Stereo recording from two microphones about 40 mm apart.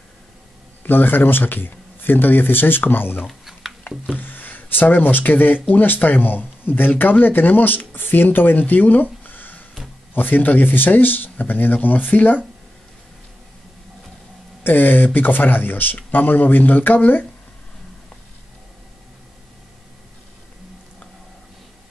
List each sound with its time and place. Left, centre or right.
0.8 s a man's voice: left
3.3 s a sound: centre
4.1 s speech: left
14.6 s a man's voice: left